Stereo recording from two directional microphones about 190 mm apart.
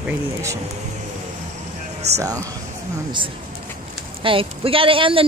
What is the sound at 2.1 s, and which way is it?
Speech, 20° right (ahead or behind).